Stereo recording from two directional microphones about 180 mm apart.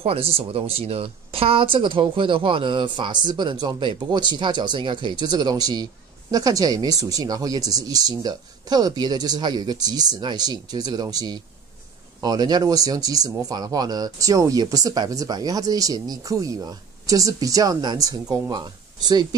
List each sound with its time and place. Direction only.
0.0 s speech: 30° right (ahead or behind)